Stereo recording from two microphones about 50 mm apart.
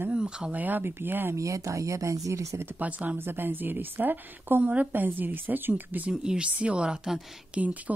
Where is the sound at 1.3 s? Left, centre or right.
Right.